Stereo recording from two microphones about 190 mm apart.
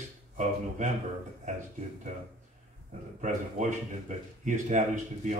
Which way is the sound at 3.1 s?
40° right (ahead or behind).